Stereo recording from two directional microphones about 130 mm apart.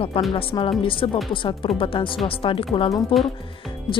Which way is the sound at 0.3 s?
45° left (ahead or behind).